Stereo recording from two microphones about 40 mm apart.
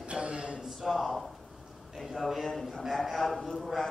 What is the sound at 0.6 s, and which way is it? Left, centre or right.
A man's voice, centre.